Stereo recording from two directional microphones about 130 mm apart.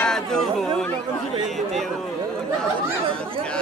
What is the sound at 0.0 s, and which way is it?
Chatter, 5° left (ahead or behind).